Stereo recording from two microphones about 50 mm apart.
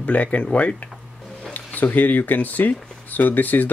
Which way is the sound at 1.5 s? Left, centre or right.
Left.